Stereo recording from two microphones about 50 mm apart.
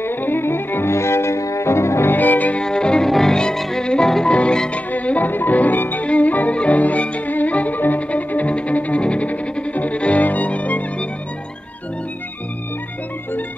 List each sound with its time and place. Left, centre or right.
0.0 s music: left
0.9 s cello: left
2.1 s music: left
2.6 s music: centre
3.1 s music: centre
3.8 s music: centre; by 6.0 s left
6.0 s violin: left